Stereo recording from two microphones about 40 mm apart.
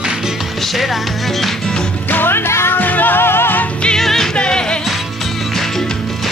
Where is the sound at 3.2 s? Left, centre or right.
Left.